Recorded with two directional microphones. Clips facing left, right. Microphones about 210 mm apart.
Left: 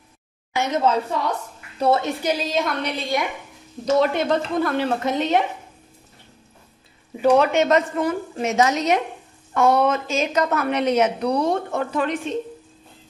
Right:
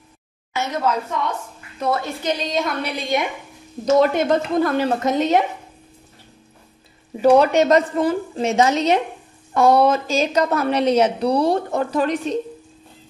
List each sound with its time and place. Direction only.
0.6 s a woman's voice: 20° left (ahead or behind)
2.2 s a woman's voice: 5° left (ahead or behind)
3.1 s a woman's voice: 20° right (ahead or behind)
3.8 s a woman's voice: 45° right (ahead or behind)
7.2 s a woman's voice: 35° right (ahead or behind)